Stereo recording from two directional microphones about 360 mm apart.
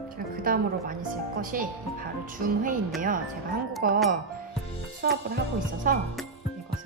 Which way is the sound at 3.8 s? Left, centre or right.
Right.